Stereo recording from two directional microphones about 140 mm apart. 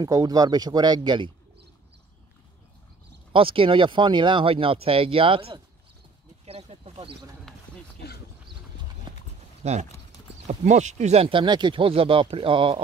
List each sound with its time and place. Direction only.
0.0 s speech: 25° right (ahead or behind)
3.3 s speech: 40° right (ahead or behind)
9.1 s clip-clop: 35° right (ahead or behind)
9.6 s speech: 50° right (ahead or behind)